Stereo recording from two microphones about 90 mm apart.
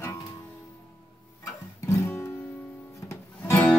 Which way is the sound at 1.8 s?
35° left (ahead or behind).